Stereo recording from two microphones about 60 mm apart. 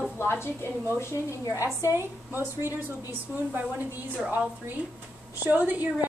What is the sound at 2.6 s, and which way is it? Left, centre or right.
A woman's voice, right.